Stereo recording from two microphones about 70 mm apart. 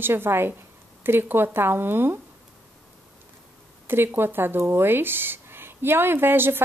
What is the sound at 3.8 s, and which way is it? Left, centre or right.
A woman's voice, right.